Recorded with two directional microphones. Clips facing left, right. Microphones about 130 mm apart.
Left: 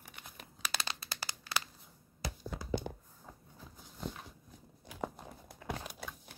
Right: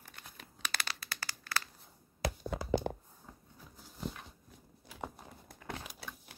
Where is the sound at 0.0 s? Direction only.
10° left (ahead or behind).